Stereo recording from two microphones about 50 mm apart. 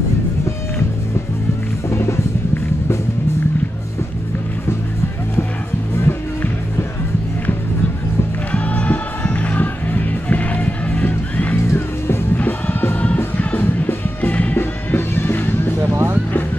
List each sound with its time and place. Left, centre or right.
1.9 s music: left
6.0 s music: left
8.5 s music: left
14.6 s music: left
15.9 s music: right